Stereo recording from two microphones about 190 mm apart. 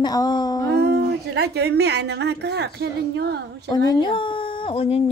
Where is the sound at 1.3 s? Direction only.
60° right (ahead or behind).